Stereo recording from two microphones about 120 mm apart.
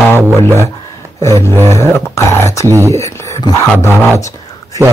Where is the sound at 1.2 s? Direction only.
25° left (ahead or behind).